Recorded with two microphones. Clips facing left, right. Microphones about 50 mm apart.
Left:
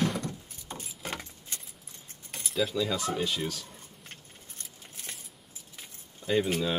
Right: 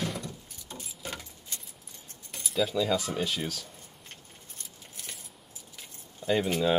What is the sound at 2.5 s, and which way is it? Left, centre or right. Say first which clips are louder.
Keys jangling: right 1 dB; centre.